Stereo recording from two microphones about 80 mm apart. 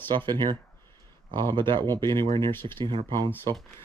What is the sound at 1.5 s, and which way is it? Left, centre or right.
Speech, right.